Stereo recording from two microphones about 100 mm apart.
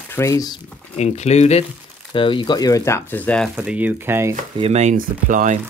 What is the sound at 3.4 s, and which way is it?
Speech, 5° right (ahead or behind).